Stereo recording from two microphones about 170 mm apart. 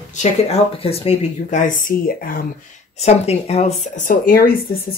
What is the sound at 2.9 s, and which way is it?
Speech, 40° left (ahead or behind).